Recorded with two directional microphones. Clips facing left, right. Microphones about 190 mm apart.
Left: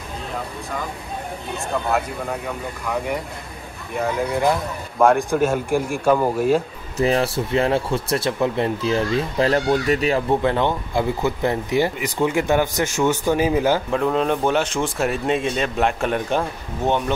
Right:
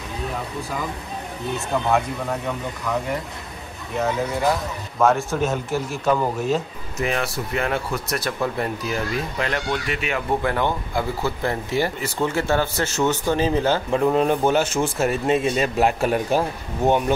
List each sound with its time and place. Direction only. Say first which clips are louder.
1.9 s speech: right 2 dB; centre (ahead or behind)
5.0 s speech: left 3 dB; 10° left (ahead or behind)
7.0 s speech: left 5 dB; 30° left (ahead or behind)
10.4 s speech: left 3 dB; 20° left (ahead or behind)
13.9 s speech: right 1 dB; 5° right (ahead or behind)